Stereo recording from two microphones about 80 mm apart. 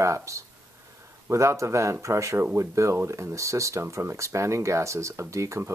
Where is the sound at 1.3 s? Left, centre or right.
Right.